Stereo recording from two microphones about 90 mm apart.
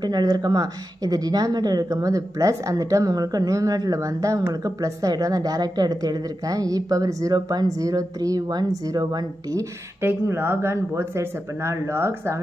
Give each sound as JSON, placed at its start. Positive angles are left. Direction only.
{"t": 0.0, "sound": "speech", "side_deg": -50}
{"t": 10.0, "sound": "speech", "side_deg": -25}